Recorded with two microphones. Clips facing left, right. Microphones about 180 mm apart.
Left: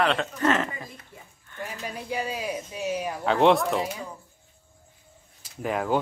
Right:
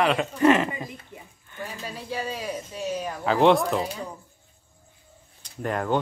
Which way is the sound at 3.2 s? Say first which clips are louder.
Right 1 dB; centre (ahead or behind).